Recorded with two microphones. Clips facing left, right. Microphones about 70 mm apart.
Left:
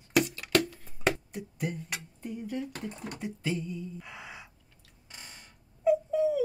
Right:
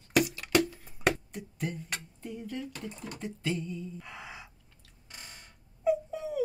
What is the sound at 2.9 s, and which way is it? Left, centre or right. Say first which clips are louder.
Speech: left 2 dB; left.